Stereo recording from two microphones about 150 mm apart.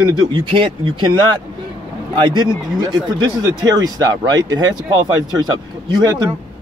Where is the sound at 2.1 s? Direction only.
30° right (ahead or behind).